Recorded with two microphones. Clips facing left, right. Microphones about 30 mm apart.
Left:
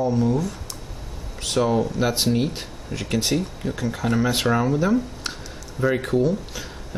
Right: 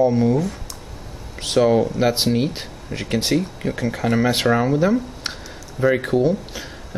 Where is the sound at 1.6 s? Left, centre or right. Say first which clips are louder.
Right 5 dB; centre.